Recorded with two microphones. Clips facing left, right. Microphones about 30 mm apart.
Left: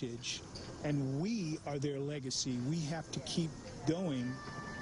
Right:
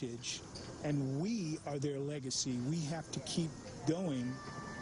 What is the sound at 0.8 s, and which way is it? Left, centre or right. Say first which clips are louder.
Speech: even; centre.